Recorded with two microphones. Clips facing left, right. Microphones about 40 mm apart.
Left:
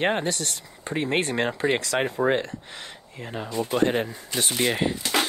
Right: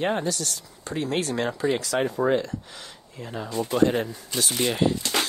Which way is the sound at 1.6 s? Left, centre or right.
Left.